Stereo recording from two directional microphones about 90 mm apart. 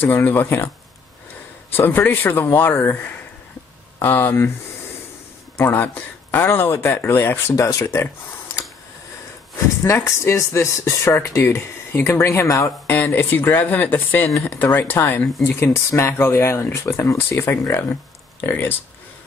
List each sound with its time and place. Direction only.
0.0 s speech: 20° left (ahead or behind)
1.7 s speech: 20° left (ahead or behind)
4.0 s speech: 25° left (ahead or behind)
5.6 s speech: 20° left (ahead or behind)
7.5 s speech: 35° left (ahead or behind)
9.9 s speech: 30° left (ahead or behind)